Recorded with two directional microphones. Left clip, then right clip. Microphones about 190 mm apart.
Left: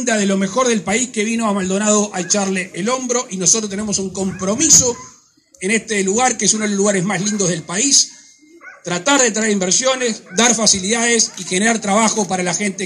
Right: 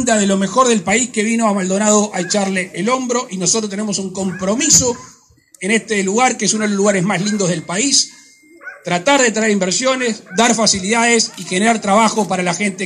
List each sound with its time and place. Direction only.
0.0 s a man's voice: 30° left (ahead or behind)